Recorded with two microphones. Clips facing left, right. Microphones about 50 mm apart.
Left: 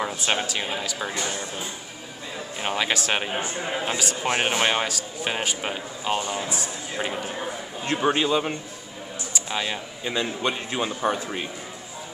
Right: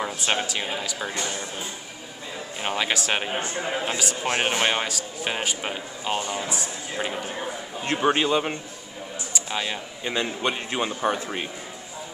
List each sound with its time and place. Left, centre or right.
0.2 s speech: centre
2.6 s speech: centre
8.0 s a man's voice: right
9.3 s a sound: centre
10.1 s a man's voice: right